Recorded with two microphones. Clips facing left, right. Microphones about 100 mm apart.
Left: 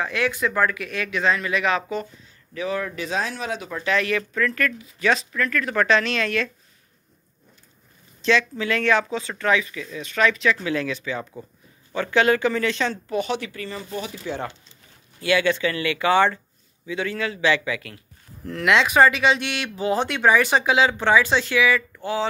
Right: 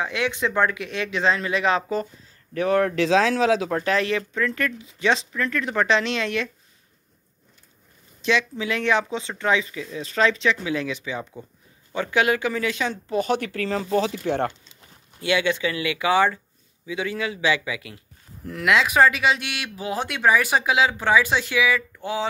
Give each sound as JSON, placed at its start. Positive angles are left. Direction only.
{"t": 0.0, "sound": "speech", "side_deg": -20}
{"t": 2.5, "sound": "speech", "side_deg": -60}
{"t": 3.8, "sound": "speech", "side_deg": -30}
{"t": 8.2, "sound": "speech", "side_deg": -15}
{"t": 13.1, "sound": "speech", "side_deg": -45}
{"t": 13.5, "sound": "speech", "side_deg": -90}
{"t": 15.1, "sound": "speech", "side_deg": -20}